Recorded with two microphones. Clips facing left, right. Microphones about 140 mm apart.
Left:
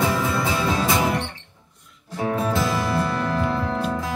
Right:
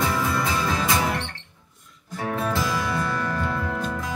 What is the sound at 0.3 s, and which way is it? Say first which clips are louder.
Music: left 2 dB; 25° left (ahead or behind).